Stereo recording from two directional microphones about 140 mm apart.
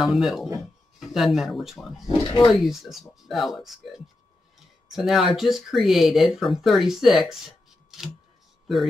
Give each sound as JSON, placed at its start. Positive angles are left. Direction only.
{"t": 0.0, "sound": "speech", "side_deg": 0}
{"t": 2.0, "sound": "speech", "side_deg": 25}
{"t": 2.5, "sound": "speech", "side_deg": 0}